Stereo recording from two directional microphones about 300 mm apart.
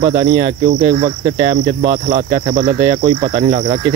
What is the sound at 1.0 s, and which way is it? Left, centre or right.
Cricket, centre.